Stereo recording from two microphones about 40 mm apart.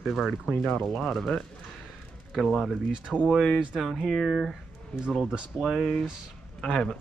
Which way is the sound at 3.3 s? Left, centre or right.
Centre.